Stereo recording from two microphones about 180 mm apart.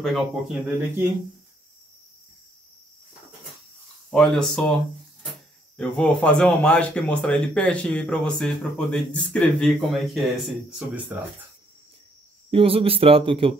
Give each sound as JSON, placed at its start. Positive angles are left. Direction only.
{"t": 0.0, "sound": "speech", "side_deg": 0}
{"t": 4.1, "sound": "speech", "side_deg": 5}
{"t": 5.8, "sound": "speech", "side_deg": 5}
{"t": 12.4, "sound": "speech", "side_deg": -30}